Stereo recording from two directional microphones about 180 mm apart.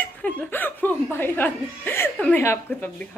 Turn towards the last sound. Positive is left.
turn(degrees=10)  # may be behind; listen again after turning